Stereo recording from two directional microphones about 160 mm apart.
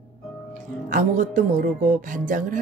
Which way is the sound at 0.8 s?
55° right (ahead or behind).